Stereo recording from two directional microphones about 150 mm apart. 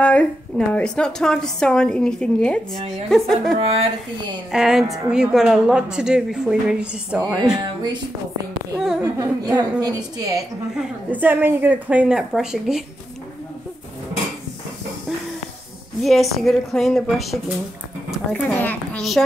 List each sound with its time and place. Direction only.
0.0 s a woman's voice: 10° left (ahead or behind)
3.5 s speech: 40° right (ahead or behind)
4.5 s a woman's voice: 5° right (ahead or behind)
7.5 s a woman's voice: 30° right (ahead or behind)
8.7 s a woman's voice: 5° right (ahead or behind)
9.2 s a woman's voice: 25° right (ahead or behind)
11.1 s speech: 15° right (ahead or behind)
16.0 s a woman's voice: centre (ahead or behind)